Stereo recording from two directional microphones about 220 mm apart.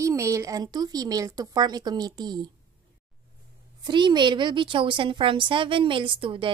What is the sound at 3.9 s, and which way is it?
A woman's voice, 20° right (ahead or behind).